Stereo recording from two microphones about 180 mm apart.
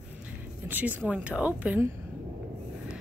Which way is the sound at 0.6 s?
10° right (ahead or behind).